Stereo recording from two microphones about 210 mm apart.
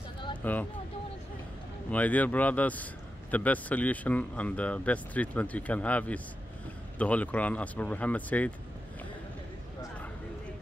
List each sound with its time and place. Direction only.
0.4 s speech: 10° left (ahead or behind)
1.9 s speech: 5° left (ahead or behind)